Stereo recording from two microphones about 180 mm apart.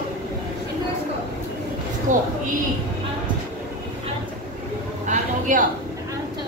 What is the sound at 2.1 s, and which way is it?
Speech, 45° right (ahead or behind).